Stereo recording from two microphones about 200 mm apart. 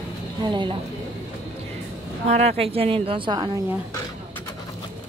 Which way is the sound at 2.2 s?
35° right (ahead or behind).